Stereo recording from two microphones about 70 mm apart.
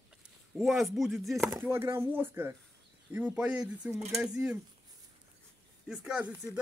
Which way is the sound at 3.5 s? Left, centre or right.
Centre.